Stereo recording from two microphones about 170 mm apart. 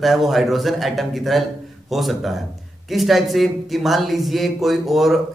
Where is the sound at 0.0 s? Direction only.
Centre (ahead or behind).